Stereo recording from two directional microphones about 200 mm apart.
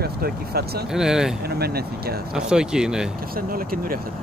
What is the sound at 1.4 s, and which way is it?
Speech, 50° right (ahead or behind).